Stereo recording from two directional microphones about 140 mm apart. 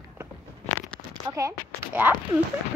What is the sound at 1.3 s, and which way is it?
Speech, 25° right (ahead or behind).